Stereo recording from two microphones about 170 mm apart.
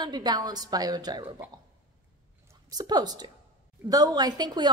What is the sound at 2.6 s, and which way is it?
A woman's voice, 25° right (ahead or behind).